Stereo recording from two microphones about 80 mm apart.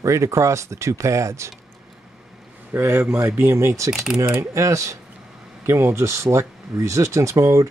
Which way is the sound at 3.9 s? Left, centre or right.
Centre.